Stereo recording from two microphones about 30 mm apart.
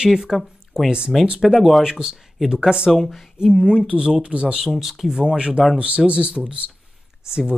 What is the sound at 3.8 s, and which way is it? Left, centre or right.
Speech, right.